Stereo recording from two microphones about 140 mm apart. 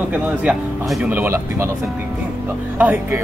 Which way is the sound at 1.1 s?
15° right (ahead or behind).